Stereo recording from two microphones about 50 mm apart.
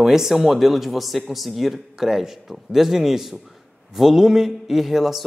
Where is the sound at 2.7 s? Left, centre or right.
Centre.